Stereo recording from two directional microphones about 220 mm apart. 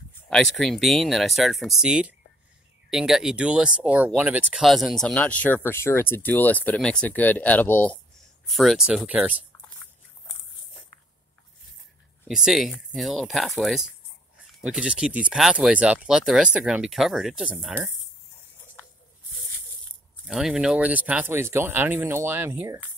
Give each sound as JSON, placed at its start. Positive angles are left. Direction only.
{"t": 0.3, "sound": "speech", "side_deg": 0}
{"t": 12.3, "sound": "speech", "side_deg": 0}
{"t": 20.2, "sound": "speech", "side_deg": 0}